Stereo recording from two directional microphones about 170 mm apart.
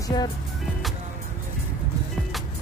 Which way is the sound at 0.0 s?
25° left (ahead or behind).